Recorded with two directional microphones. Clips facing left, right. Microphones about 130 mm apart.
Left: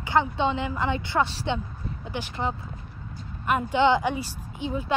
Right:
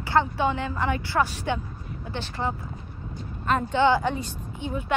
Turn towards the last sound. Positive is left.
turn(degrees=10)  # may be behind; listen again after turning